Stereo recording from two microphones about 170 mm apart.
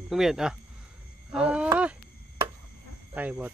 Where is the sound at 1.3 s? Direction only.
5° right (ahead or behind).